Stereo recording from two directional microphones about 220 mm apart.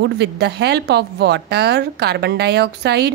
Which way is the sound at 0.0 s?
50° right (ahead or behind).